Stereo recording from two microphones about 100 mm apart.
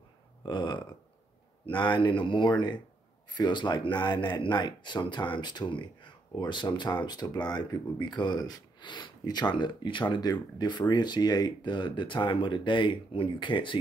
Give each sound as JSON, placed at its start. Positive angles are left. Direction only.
{"t": 0.5, "sound": "speech", "side_deg": 50}